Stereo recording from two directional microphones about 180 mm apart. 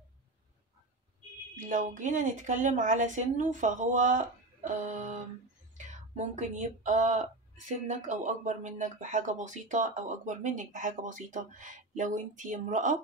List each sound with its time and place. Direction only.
1.7 s speech: 45° right (ahead or behind)